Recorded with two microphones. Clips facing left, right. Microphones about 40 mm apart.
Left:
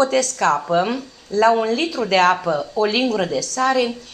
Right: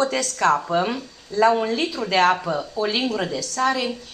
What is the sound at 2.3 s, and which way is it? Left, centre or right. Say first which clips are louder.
Speech: left 5 dB; centre.